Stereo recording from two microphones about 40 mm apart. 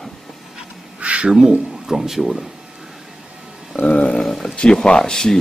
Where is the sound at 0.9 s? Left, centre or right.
Right.